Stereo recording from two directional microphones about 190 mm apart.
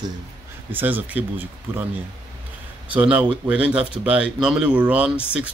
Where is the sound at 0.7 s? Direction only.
10° right (ahead or behind).